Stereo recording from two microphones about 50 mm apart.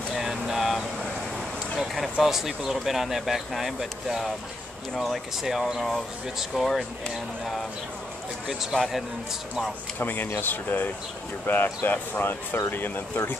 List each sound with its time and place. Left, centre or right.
0.1 s a sound: centre
2.1 s speech: centre
8.7 s a man's voice: left
9.9 s speech: left